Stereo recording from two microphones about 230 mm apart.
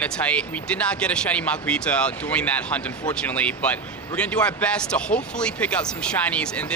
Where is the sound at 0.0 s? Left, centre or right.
Centre.